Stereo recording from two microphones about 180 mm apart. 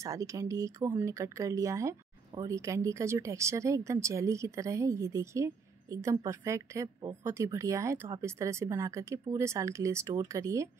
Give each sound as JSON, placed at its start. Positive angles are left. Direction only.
{"t": 0.0, "sound": "speech", "side_deg": -20}